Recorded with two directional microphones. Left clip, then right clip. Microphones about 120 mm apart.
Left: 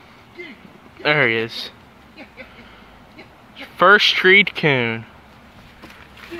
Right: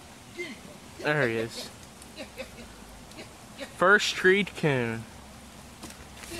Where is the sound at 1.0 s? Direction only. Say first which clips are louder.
Left 10 dB; 30° left (ahead or behind).